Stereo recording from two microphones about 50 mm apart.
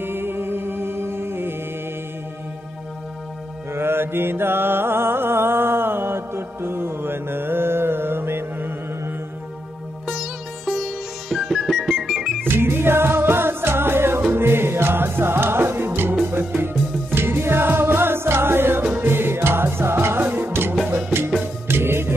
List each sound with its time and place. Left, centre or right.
0.0 s music: right
3.7 s mantra: right
10.0 s sitar: centre
12.4 s music: right
20.2 s music: right